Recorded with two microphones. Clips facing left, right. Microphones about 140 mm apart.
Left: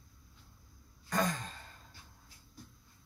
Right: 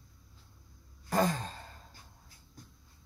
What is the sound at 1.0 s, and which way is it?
Sigh, 30° right (ahead or behind).